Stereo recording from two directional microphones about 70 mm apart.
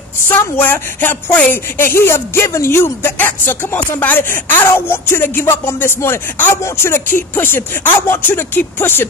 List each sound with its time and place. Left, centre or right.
0.3 s a woman's voice: left